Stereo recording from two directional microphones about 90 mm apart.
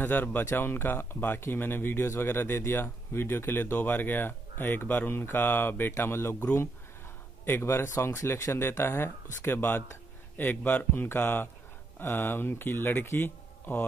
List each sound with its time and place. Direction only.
0.0 s speech: 20° left (ahead or behind)
7.4 s speech: 25° left (ahead or behind)